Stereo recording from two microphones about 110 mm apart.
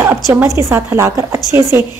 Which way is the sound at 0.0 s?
20° right (ahead or behind).